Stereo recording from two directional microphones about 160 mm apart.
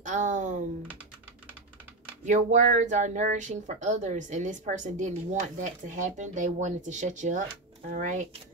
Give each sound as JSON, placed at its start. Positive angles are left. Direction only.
{"t": 0.0, "sound": "speech", "side_deg": -50}
{"t": 2.2, "sound": "speech", "side_deg": -50}